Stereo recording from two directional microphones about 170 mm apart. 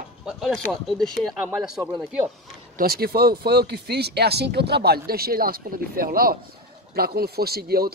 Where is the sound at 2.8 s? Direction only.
60° right (ahead or behind).